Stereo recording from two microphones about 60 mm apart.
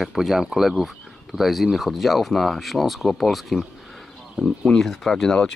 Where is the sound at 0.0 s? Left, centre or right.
Centre.